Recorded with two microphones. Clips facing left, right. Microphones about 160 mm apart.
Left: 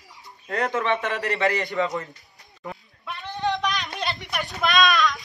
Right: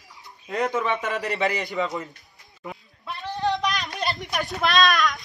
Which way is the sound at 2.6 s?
Centre (ahead or behind).